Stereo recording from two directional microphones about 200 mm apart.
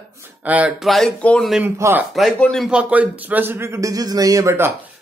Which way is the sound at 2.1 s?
Centre (ahead or behind).